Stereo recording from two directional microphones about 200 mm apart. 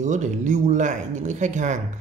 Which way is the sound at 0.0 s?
35° right (ahead or behind).